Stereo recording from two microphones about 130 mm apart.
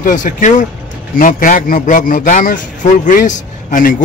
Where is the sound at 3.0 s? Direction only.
75° left (ahead or behind).